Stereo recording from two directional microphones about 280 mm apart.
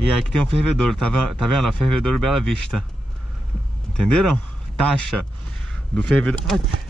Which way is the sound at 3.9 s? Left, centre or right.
Right.